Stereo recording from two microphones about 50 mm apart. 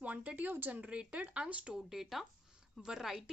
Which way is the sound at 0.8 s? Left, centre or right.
Right.